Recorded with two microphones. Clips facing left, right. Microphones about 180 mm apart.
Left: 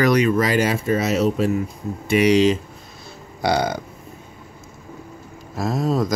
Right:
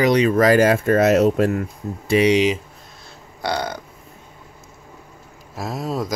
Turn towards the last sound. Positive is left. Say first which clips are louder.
# left 4 dB
turn(degrees=-5)  # may be behind; listen again after turning